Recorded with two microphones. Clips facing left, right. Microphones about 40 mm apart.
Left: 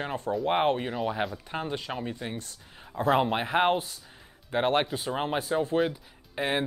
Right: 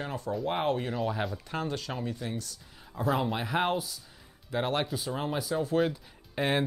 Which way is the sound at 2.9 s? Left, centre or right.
Left.